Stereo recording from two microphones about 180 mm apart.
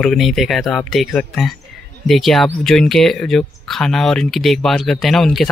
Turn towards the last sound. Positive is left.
turn(degrees=0)  # may be behind; listen again after turning